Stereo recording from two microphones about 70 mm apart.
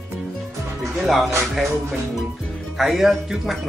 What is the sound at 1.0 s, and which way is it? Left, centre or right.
Speech, centre.